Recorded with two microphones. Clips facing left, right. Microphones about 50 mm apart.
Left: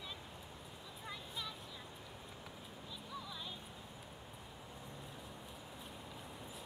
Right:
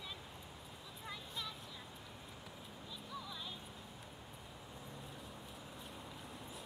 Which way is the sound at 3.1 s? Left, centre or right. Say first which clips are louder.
Even; centre.